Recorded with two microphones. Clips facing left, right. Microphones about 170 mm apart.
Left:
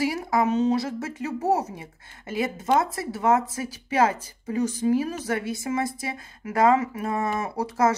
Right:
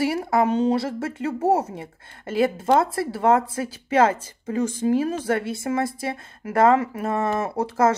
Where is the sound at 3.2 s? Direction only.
55° right (ahead or behind).